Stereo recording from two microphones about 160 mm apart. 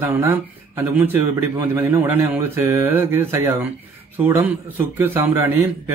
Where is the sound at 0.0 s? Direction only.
15° right (ahead or behind).